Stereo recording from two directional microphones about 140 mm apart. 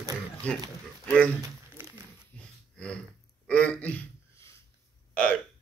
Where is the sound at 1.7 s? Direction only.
20° right (ahead or behind).